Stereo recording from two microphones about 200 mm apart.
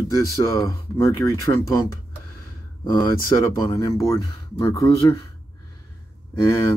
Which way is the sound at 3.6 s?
15° left (ahead or behind).